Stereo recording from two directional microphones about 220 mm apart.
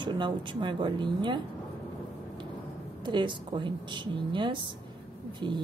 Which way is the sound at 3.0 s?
20° right (ahead or behind).